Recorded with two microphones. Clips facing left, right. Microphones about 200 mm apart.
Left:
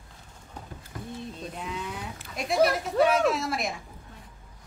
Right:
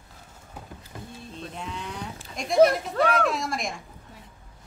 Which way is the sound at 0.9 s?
25° right (ahead or behind).